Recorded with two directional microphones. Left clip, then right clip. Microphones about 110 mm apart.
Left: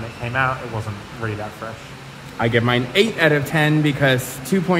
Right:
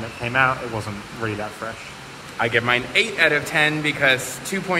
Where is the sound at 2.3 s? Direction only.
30° left (ahead or behind).